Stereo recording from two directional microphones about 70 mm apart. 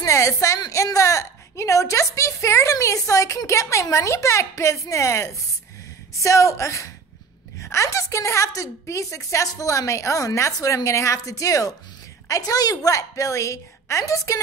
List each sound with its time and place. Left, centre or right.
0.0 s a woman's voice: left